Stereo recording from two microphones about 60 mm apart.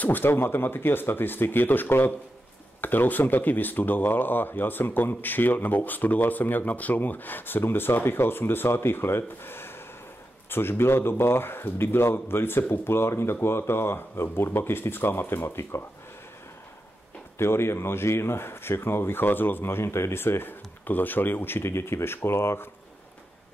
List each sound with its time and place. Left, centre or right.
0.0 s speech: left
17.4 s speech: left